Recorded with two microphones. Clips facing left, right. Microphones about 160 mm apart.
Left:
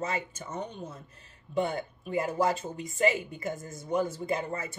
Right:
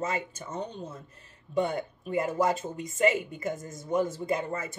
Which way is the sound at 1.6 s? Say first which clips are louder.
Right 1 dB; 25° left (ahead or behind).